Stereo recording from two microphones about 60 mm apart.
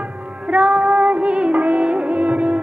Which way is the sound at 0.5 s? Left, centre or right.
Right.